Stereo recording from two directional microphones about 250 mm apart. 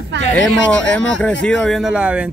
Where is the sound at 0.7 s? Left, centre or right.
Centre.